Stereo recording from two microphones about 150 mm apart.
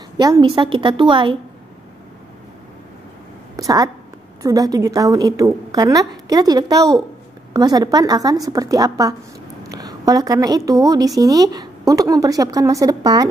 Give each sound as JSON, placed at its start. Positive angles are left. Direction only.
{"t": 0.2, "sound": "a woman's voice", "side_deg": -30}
{"t": 3.5, "sound": "a woman's voice", "side_deg": -25}